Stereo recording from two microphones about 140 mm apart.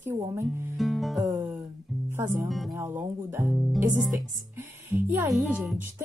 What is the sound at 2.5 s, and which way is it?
Music, centre (ahead or behind).